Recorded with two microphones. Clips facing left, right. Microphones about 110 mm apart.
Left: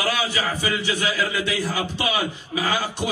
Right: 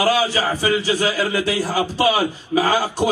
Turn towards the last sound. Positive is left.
turn(degrees=-40)  # may be behind; listen again after turning